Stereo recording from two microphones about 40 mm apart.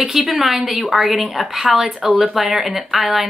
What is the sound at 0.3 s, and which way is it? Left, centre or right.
Speech, centre.